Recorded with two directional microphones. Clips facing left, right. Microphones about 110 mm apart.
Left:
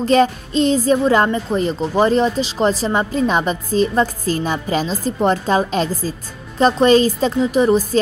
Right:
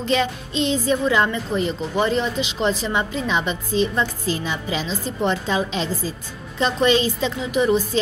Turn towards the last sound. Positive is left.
turn(degrees=40)  # may be behind; listen again after turning